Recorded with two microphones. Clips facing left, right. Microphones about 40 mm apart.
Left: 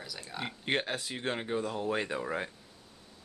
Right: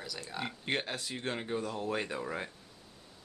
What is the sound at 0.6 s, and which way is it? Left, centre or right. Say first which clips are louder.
Speech: left 4 dB; left.